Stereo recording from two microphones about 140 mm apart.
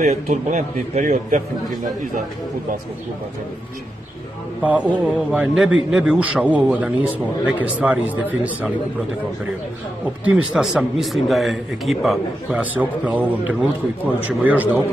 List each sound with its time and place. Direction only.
0.0 s a man's voice: 55° right (ahead or behind)
4.6 s a man's voice: 10° right (ahead or behind)
10.2 s a man's voice: 5° right (ahead or behind)